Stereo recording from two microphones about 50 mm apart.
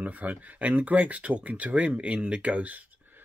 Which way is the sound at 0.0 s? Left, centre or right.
Right.